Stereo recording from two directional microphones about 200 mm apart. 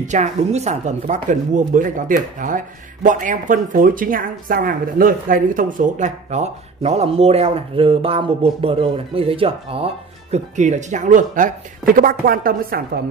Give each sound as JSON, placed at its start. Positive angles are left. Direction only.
{"t": 0.0, "sound": "speech", "side_deg": -35}